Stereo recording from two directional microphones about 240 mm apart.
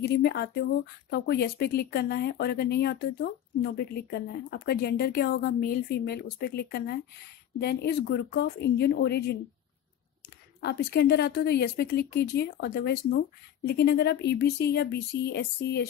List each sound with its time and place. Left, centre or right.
0.0 s speech: left
10.6 s speech: left